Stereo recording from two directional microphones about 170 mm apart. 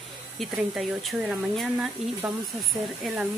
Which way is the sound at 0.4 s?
Centre (ahead or behind).